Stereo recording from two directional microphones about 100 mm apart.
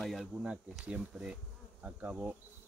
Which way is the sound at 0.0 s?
Centre (ahead or behind).